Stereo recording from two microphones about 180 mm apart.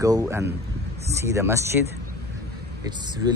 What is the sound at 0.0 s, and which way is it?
Speech, 20° right (ahead or behind).